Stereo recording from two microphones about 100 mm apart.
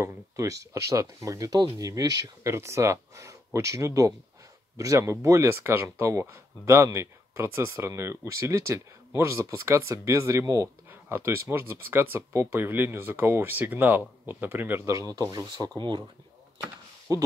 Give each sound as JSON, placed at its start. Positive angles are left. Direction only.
{"t": 0.0, "sound": "speech", "side_deg": -30}
{"t": 17.1, "sound": "speech", "side_deg": -35}